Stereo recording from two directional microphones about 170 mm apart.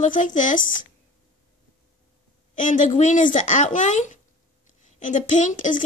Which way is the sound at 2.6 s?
50° left (ahead or behind).